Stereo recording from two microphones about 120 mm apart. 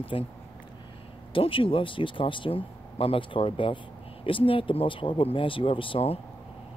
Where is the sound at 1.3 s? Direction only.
45° left (ahead or behind).